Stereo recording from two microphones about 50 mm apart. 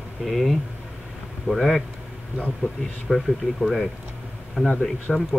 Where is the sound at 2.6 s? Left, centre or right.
Left.